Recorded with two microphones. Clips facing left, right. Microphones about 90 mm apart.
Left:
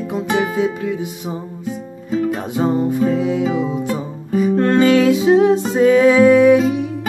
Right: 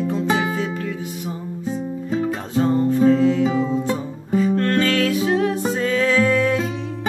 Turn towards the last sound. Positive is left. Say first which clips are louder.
# left 9 dB
turn(degrees=15)  # may be behind; listen again after turning